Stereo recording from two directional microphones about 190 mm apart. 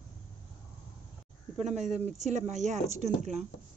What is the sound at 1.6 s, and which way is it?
A woman's voice, 35° right (ahead or behind).